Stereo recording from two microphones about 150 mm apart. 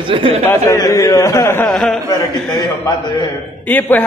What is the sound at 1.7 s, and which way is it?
Speech, 5° left (ahead or behind).